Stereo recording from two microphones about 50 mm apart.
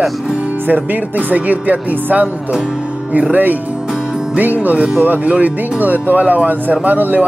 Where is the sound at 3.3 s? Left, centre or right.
Right.